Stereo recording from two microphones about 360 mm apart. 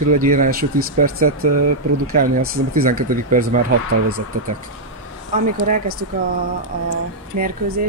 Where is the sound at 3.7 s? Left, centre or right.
Right.